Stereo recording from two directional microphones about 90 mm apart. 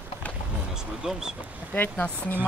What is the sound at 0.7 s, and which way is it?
Speech, 5° right (ahead or behind).